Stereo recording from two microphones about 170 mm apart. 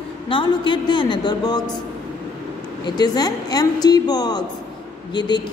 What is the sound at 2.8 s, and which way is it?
A woman's voice, 25° left (ahead or behind).